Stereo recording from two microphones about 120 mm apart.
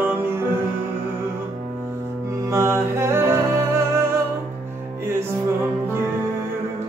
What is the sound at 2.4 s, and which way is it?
Music, 25° right (ahead or behind).